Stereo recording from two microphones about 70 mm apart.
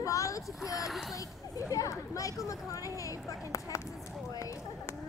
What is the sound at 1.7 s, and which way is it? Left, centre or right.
Speech, left.